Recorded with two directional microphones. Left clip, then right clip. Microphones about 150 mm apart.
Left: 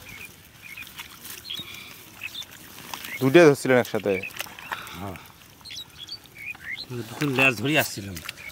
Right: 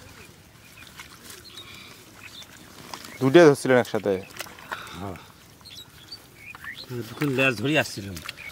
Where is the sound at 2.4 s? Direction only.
Centre (ahead or behind).